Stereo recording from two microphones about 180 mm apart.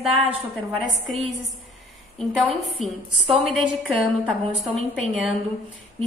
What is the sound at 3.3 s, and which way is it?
Speech, 30° right (ahead or behind).